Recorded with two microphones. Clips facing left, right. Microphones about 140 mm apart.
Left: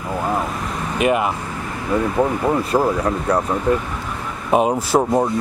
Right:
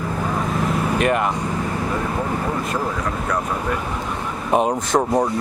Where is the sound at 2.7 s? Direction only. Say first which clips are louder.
Left 9 dB; 45° left (ahead or behind).